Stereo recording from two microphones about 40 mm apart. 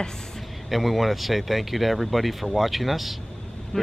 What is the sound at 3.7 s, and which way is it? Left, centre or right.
Speech, centre.